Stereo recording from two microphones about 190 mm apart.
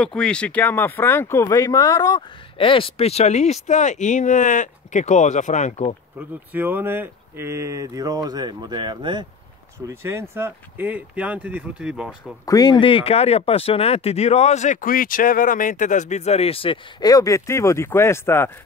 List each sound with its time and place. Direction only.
0.0 s speech: 5° left (ahead or behind); by 5.9 s 35° left (ahead or behind)
6.1 s speech: 10° right (ahead or behind)
12.4 s speech: 20° left (ahead or behind)